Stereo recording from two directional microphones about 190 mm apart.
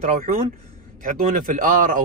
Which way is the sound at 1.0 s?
45° right (ahead or behind).